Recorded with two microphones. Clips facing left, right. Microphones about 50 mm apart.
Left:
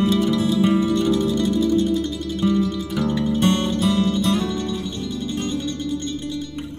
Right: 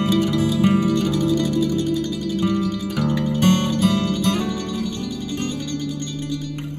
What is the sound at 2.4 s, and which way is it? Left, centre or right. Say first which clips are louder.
Music: left 5 dB; right.